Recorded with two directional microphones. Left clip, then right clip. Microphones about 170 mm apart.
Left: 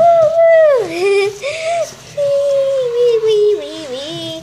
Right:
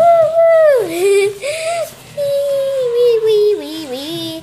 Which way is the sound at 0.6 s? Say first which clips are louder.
Right 1 dB; 20° right (ahead or behind).